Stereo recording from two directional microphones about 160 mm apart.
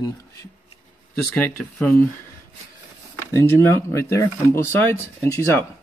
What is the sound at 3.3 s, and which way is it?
Speech, 15° left (ahead or behind).